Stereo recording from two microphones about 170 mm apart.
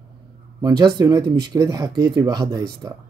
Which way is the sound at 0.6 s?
25° right (ahead or behind).